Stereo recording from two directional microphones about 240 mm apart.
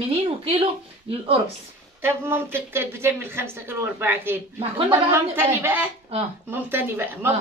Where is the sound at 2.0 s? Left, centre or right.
Centre.